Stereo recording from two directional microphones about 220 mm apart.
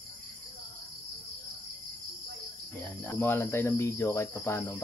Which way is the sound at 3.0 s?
10° left (ahead or behind).